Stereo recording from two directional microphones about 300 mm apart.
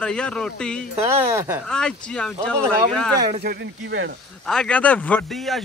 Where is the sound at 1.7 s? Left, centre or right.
Centre.